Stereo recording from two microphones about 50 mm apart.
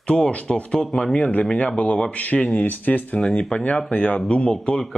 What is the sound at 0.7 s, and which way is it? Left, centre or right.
Speech, centre.